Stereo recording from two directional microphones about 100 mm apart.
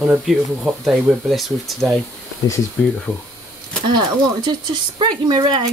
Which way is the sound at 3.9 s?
50° right (ahead or behind).